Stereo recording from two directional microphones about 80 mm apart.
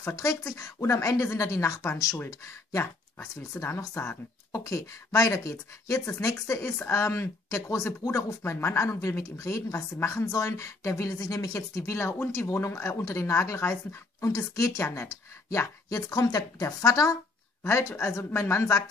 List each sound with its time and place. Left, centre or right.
0.0 s speech: left
4.5 s speech: left
16.1 s speech: left